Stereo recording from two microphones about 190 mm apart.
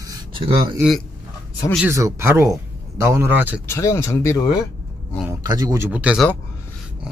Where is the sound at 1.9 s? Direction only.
15° right (ahead or behind).